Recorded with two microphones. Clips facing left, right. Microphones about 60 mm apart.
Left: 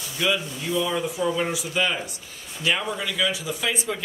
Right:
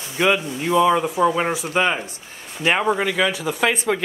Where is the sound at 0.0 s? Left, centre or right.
Right.